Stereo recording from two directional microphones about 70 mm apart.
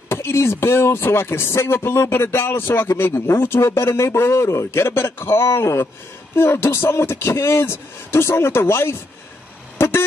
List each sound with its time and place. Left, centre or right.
0.1 s speech: left
9.8 s vehicle horn: left